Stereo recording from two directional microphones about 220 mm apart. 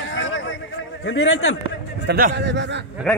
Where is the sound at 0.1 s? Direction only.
60° left (ahead or behind).